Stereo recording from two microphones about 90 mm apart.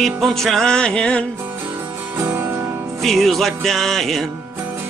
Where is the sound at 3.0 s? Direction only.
Centre (ahead or behind).